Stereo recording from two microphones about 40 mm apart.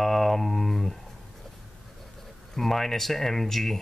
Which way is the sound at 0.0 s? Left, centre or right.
Centre.